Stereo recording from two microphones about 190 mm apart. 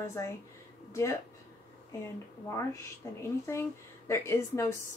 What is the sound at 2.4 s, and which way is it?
Speech, 15° left (ahead or behind).